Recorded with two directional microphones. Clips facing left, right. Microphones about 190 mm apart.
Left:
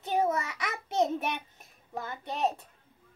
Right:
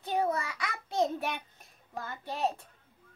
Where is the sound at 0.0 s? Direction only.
20° left (ahead or behind).